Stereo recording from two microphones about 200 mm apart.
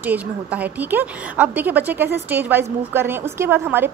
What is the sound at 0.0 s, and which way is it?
A woman's voice, 10° right (ahead or behind).